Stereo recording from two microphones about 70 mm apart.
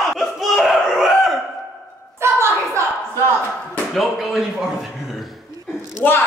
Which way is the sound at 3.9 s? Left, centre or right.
Centre.